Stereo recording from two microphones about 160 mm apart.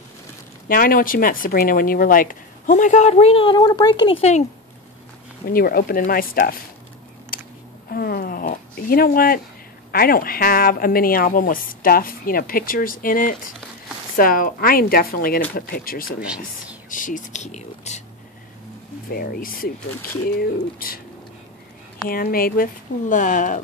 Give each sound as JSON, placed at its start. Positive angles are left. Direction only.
{"t": 0.7, "sound": "speech", "side_deg": 60}
{"t": 4.2, "sound": "speech", "side_deg": 45}
{"t": 5.5, "sound": "speech", "side_deg": 65}
{"t": 7.3, "sound": "a sound", "side_deg": 65}
{"t": 9.8, "sound": "speech", "side_deg": 70}
{"t": 16.2, "sound": "speech", "side_deg": -5}
{"t": 16.9, "sound": "speech", "side_deg": 55}
{"t": 19.1, "sound": "speech", "side_deg": 65}
{"t": 22.1, "sound": "speech", "side_deg": 65}